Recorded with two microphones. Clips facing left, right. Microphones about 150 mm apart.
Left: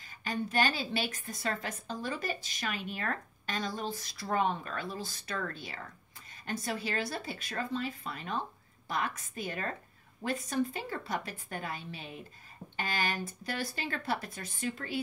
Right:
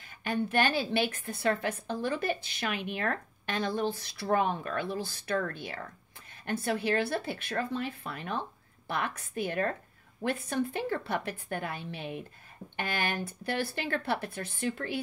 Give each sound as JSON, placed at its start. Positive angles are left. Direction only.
{"t": 0.0, "sound": "a woman's voice", "side_deg": -60}